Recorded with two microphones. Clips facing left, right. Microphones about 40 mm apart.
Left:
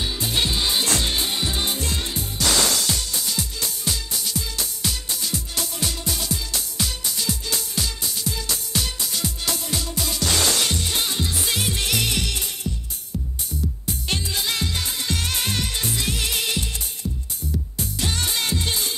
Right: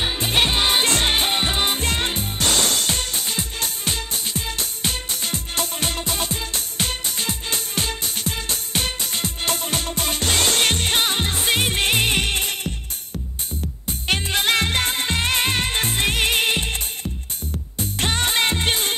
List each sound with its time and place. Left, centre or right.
0.0 s music: right
13.8 s music: right